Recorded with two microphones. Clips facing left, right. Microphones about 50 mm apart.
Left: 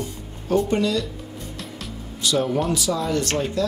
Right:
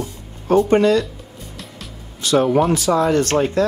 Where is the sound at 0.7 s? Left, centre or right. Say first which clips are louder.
Right 7 dB; right.